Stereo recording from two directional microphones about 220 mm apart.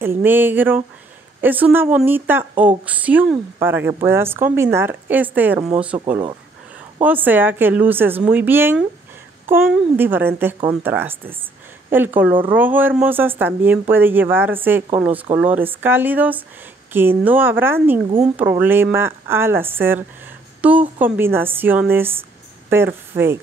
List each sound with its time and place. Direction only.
0.0 s speech: 10° right (ahead or behind)